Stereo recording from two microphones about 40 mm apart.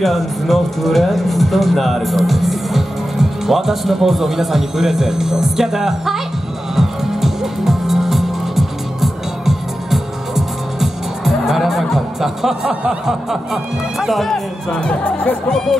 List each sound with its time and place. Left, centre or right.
0.0 s speech: centre
6.7 s music: centre
13.0 s speech: centre
14.7 s speech: left